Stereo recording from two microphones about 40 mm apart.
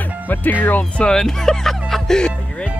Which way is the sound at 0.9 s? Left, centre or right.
Left.